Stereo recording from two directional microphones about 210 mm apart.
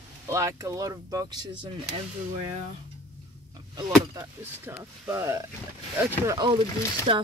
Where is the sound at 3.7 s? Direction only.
20° right (ahead or behind).